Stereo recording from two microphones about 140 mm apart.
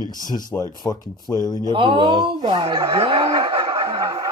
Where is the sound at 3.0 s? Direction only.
45° right (ahead or behind).